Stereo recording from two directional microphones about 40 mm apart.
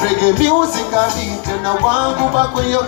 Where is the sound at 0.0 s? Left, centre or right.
Right.